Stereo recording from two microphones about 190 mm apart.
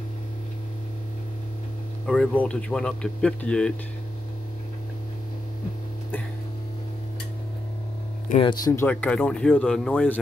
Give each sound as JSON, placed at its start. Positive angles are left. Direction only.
{"t": 2.0, "sound": "speech", "side_deg": 5}
{"t": 8.4, "sound": "speech", "side_deg": 25}
{"t": 8.7, "sound": "speech", "side_deg": 10}